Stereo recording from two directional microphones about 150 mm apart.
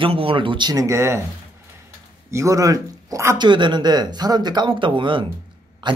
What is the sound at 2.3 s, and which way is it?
Speech, 20° right (ahead or behind).